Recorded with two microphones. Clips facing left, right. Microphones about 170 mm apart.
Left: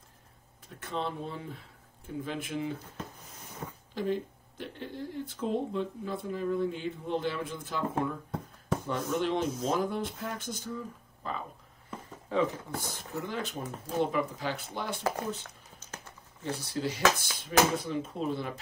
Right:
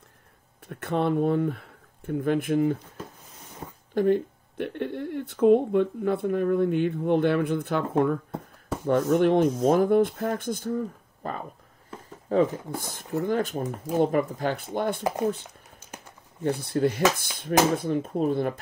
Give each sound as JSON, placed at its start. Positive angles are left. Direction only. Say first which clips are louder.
{"t": 0.7, "sound": "speech", "louder": "right 10 dB", "side_deg": -60}
{"t": 3.9, "sound": "speech", "louder": "right 10 dB", "side_deg": -55}
{"t": 15.8, "sound": "a sound", "louder": "right 2 dB", "side_deg": -15}
{"t": 16.4, "sound": "speech", "louder": "right 9 dB", "side_deg": -55}